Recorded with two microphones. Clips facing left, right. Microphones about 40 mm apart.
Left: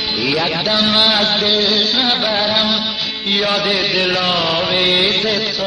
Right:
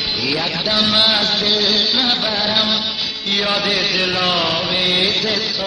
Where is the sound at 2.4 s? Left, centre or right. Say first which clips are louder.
Left 2 dB; centre.